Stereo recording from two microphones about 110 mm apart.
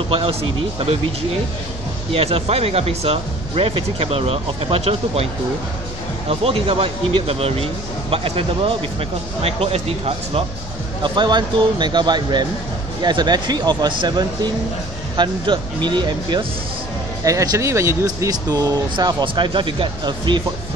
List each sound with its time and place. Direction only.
0.1 s speech: 60° right (ahead or behind)
2.1 s speech: 65° right (ahead or behind)
11.0 s speech: 45° right (ahead or behind)
17.2 s speech: 30° right (ahead or behind)
18.9 s speech: 40° right (ahead or behind)